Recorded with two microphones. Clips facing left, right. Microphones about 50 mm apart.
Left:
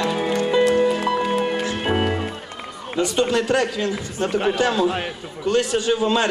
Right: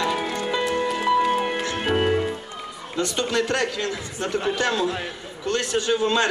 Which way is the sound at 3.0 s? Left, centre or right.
Centre.